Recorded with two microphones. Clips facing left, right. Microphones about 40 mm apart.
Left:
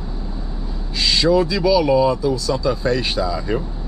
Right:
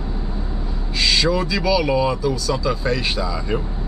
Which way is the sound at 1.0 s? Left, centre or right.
Centre.